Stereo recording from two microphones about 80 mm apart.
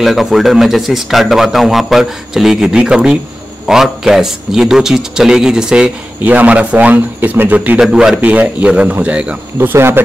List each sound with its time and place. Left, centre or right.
0.0 s a man's voice: centre
7.8 s a man's voice: centre
8.2 s a man's voice: centre
9.6 s speech: right